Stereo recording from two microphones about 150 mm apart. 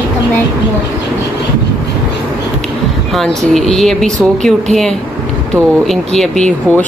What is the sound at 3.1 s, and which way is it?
Speech, centre (ahead or behind).